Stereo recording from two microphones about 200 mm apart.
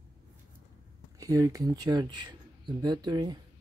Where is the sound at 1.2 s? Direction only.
15° right (ahead or behind).